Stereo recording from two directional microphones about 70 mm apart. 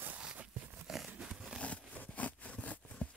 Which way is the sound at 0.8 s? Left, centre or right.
Centre.